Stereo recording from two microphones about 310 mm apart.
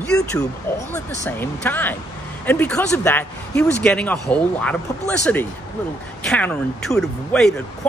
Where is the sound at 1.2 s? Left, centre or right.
Centre.